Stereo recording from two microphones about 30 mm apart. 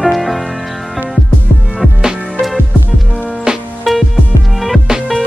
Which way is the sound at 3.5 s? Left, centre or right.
Right.